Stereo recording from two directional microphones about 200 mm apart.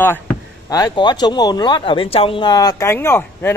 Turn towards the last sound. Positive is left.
turn(degrees=10)  # may be behind; listen again after turning